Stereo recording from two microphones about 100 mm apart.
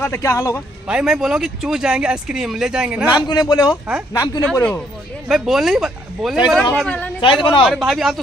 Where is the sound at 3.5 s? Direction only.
45° left (ahead or behind).